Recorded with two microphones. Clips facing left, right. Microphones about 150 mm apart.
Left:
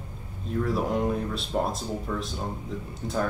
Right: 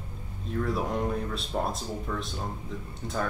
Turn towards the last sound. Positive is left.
turn(degrees=0)  # may be behind; listen again after turning